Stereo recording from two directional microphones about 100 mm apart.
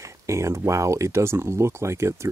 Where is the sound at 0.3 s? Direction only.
30° right (ahead or behind).